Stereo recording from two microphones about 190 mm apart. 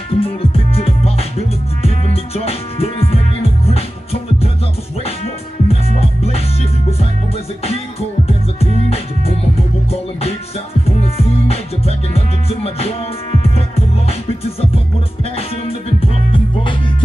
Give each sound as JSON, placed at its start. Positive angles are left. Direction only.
{"t": 0.1, "sound": "music", "side_deg": 30}
{"t": 5.7, "sound": "music", "side_deg": 30}
{"t": 8.3, "sound": "music", "side_deg": 30}
{"t": 10.9, "sound": "music", "side_deg": 30}
{"t": 16.0, "sound": "music", "side_deg": 30}